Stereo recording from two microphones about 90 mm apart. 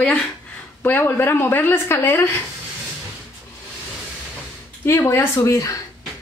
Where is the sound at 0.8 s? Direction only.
25° left (ahead or behind).